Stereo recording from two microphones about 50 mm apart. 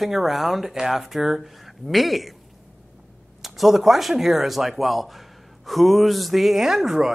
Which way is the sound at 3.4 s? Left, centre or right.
Centre.